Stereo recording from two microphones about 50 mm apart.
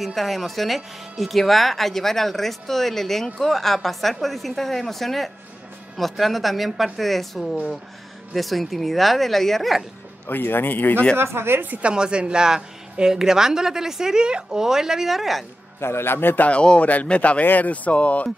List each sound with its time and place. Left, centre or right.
0.0 s speech: centre
10.2 s a man's voice: left
11.1 s speech: right
11.8 s a woman's voice: centre
15.8 s a man's voice: left
16.4 s speech: left